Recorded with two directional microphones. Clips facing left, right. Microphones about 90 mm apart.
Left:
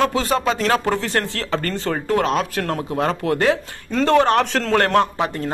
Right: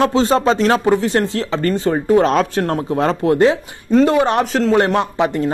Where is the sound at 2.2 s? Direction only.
40° right (ahead or behind); by 5.3 s 15° right (ahead or behind).